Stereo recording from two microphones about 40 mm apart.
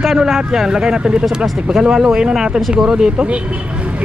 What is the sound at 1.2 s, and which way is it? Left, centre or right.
Speech, centre.